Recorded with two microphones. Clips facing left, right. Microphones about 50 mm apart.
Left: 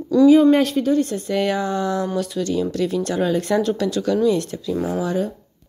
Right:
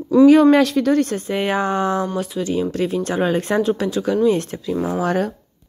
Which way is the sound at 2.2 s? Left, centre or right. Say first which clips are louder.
Even; right.